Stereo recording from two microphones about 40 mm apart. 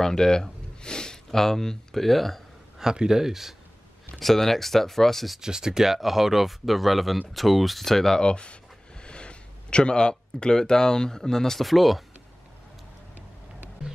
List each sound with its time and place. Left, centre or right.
0.0 s speech: centre
2.8 s speech: centre
4.2 s speech: centre
5.4 s speech: centre
11.6 s speech: centre
13.8 s music: centre